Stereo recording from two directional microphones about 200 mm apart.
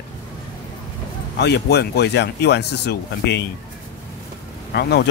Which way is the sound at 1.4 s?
55° left (ahead or behind).